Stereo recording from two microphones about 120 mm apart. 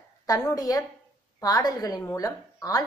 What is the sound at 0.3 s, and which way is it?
A woman's voice, 30° left (ahead or behind).